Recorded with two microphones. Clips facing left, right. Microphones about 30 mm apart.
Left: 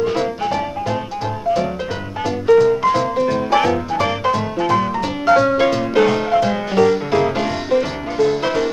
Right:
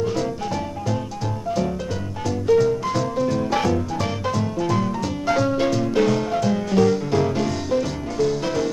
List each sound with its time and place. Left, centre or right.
0.0 s music: left
2.2 s music: left